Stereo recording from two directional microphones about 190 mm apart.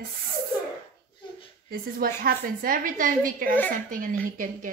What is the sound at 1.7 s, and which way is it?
A woman's voice, 50° right (ahead or behind).